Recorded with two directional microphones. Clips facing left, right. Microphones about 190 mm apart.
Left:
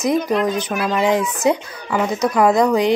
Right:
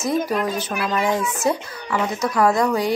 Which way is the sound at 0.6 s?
15° left (ahead or behind).